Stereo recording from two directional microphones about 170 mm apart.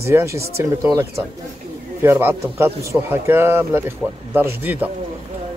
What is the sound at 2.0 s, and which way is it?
Speech, 15° right (ahead or behind).